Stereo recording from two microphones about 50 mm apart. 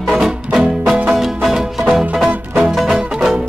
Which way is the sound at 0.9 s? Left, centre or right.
Right.